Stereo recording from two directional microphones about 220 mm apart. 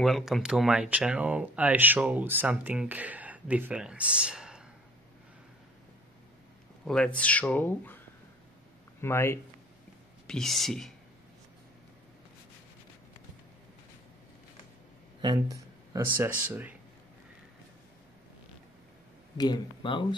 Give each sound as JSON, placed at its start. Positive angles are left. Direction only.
{"t": 0.0, "sound": "speech", "side_deg": 0}
{"t": 6.8, "sound": "speech", "side_deg": 5}
{"t": 9.0, "sound": "speech", "side_deg": 10}
{"t": 15.2, "sound": "speech", "side_deg": -15}
{"t": 19.3, "sound": "speech", "side_deg": 20}